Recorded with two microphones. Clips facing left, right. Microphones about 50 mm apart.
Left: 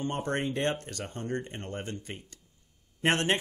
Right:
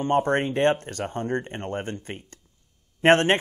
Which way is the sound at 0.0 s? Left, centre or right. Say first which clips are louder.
Right 9 dB; right.